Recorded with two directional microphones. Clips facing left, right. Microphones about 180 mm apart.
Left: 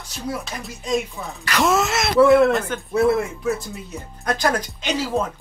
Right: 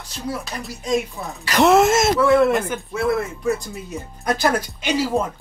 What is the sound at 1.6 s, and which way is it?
Speech, 60° right (ahead or behind).